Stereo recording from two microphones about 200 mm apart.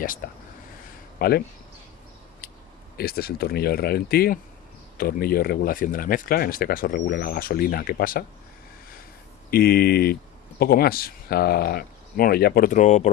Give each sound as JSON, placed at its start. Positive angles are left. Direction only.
{"t": 0.2, "sound": "speech", "side_deg": 45}
{"t": 2.4, "sound": "a sound", "side_deg": 50}
{"t": 3.0, "sound": "speech", "side_deg": 50}
{"t": 9.5, "sound": "speech", "side_deg": 50}